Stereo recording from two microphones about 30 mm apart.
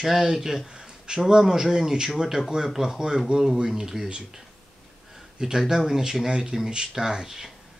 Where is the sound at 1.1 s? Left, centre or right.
Right.